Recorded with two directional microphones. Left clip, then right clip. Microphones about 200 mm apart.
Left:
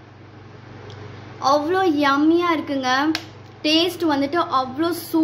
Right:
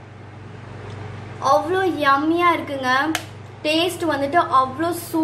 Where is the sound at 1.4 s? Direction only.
40° left (ahead or behind).